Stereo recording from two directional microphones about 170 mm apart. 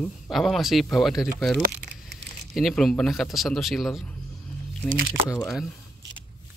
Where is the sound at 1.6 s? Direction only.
75° right (ahead or behind).